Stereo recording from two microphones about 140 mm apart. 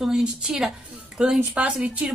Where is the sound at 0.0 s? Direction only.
5° right (ahead or behind).